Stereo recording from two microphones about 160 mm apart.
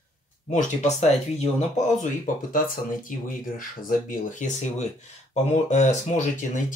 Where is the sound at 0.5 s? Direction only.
50° left (ahead or behind).